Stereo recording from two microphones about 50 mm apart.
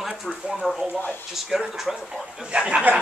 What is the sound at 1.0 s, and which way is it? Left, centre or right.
Speech, left.